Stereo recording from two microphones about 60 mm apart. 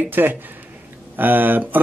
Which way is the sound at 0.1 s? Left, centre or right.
Right.